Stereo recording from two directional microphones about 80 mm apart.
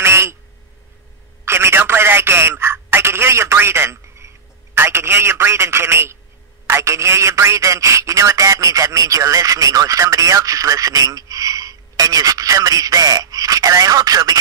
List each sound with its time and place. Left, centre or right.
0.0 s quack: right
1.4 s telephone: right
4.7 s a man's voice: right